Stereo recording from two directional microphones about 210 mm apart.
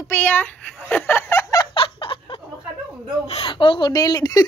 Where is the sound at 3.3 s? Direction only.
25° left (ahead or behind).